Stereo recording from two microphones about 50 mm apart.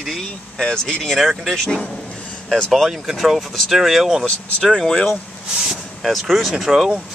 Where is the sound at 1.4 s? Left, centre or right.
Centre.